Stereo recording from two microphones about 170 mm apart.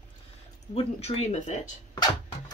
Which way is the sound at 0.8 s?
35° left (ahead or behind).